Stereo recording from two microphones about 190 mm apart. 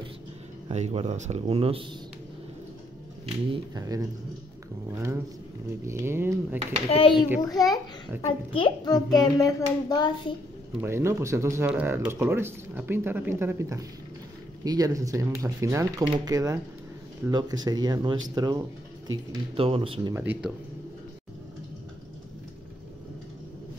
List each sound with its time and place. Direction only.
0.7 s speech: 35° right (ahead or behind)
3.5 s speech: 20° right (ahead or behind)
6.9 s a child's voice: 30° left (ahead or behind)
10.8 s speech: 15° right (ahead or behind)
20.2 s speech: 10° right (ahead or behind)